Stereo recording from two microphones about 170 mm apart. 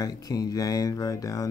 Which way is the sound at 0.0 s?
20° left (ahead or behind).